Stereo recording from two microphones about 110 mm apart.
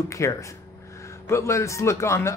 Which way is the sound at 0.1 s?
30° left (ahead or behind).